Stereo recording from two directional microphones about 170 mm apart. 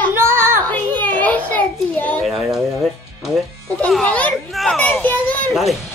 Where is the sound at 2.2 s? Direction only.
Centre (ahead or behind).